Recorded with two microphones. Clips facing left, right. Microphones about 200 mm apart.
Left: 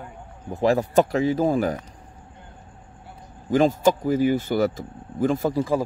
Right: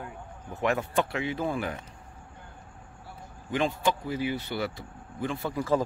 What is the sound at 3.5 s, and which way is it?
Speech, 40° left (ahead or behind).